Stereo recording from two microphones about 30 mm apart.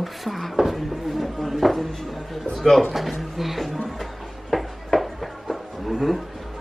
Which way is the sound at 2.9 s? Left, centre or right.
Centre.